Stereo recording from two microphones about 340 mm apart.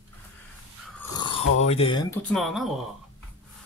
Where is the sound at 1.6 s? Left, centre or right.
Centre.